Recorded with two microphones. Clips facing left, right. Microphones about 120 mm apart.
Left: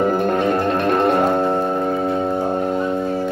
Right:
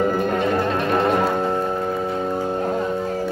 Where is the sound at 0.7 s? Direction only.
55° left (ahead or behind).